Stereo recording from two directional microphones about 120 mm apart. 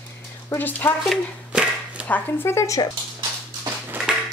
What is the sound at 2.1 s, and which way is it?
Speech, 20° left (ahead or behind).